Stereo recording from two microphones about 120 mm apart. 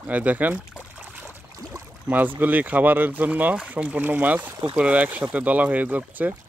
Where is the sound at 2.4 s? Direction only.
15° right (ahead or behind).